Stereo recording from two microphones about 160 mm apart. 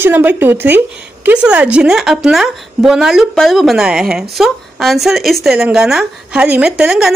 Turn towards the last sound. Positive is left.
turn(degrees=-5)  # may be behind; listen again after turning